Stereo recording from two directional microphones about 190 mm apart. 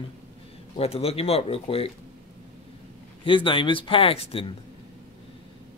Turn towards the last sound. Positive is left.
turn(degrees=30)  # may be behind; listen again after turning